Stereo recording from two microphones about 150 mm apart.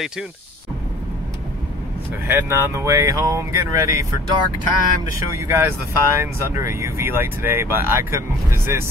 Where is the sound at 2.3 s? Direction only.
15° right (ahead or behind).